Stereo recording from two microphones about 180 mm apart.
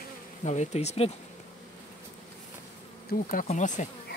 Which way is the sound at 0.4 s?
40° left (ahead or behind).